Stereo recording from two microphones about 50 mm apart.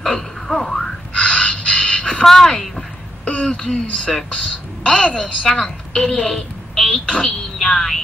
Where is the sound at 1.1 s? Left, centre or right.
Left.